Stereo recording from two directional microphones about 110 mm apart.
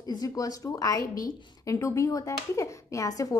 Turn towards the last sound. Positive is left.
turn(degrees=35)  # may be behind; listen again after turning